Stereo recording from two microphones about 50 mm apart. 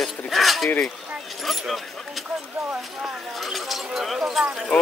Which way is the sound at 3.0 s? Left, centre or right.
Centre.